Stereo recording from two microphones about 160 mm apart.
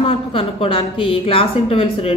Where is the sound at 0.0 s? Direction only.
35° left (ahead or behind).